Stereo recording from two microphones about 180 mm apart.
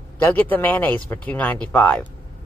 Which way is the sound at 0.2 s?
10° left (ahead or behind).